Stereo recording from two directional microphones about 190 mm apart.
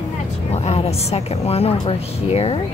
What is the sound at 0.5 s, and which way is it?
A woman's voice, 35° left (ahead or behind).